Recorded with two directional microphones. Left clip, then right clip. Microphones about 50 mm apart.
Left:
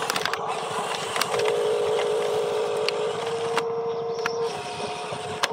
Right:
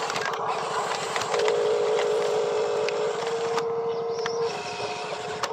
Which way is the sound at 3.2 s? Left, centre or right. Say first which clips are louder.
Even; centre.